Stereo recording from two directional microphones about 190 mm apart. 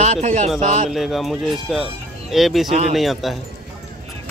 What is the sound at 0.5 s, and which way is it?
Speech, centre (ahead or behind).